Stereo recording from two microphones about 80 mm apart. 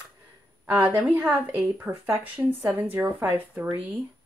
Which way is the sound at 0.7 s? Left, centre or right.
Right.